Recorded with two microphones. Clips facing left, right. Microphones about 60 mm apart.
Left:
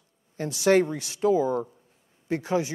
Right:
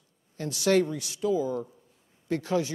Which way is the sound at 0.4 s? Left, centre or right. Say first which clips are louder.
Left 3 dB; left.